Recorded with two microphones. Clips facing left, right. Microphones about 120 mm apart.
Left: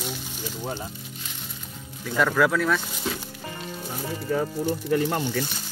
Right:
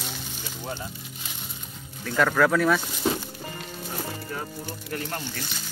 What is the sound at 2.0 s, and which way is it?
Speech, 5° left (ahead or behind).